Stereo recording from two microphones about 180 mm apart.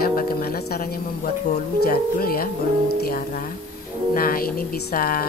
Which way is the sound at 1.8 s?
55° left (ahead or behind).